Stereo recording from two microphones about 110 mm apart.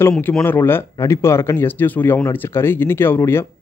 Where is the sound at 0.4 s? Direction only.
20° left (ahead or behind).